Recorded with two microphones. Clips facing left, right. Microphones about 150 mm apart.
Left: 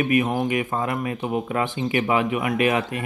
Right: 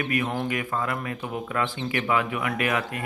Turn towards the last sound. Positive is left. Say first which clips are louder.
# left 5 dB
turn(degrees=20)  # may be behind; listen again after turning